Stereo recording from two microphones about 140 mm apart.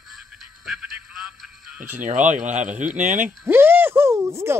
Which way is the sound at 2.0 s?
65° right (ahead or behind).